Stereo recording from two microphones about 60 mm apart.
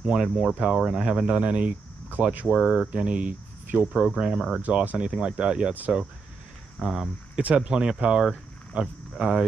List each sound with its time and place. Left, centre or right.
0.0 s speech: centre
4.6 s speech: right
6.8 s speech: centre